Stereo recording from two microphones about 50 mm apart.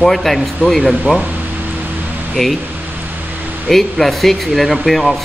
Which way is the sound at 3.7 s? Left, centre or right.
Centre.